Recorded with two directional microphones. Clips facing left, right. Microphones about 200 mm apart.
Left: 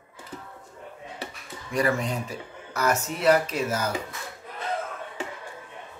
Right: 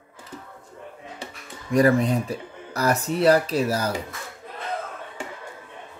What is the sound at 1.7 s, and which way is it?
Speech, 35° right (ahead or behind).